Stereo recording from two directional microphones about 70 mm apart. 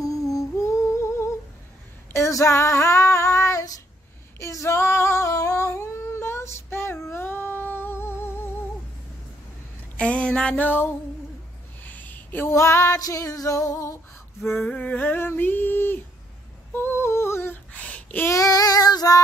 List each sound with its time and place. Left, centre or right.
0.0 s humming: left
2.1 s child singing: left
4.4 s female singing: left
5.7 s child singing: left
9.9 s a sound: centre
12.4 s female singing: left
13.0 s music: left
14.4 s female singing: left
14.7 s a sound: left
16.7 s humming: left
17.8 s a sound: left
18.3 s child singing: left